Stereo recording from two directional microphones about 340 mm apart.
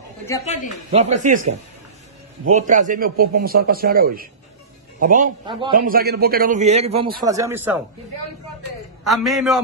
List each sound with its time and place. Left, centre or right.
0.5 s speech: left
0.9 s a man's voice: centre
2.5 s a man's voice: right
7.2 s speech: centre
9.0 s a man's voice: centre